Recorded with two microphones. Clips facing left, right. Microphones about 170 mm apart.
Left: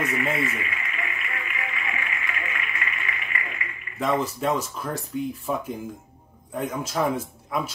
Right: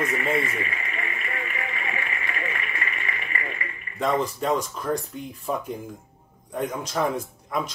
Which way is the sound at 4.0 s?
Centre (ahead or behind).